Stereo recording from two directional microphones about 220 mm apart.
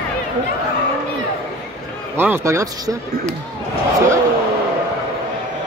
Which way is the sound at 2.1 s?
10° right (ahead or behind).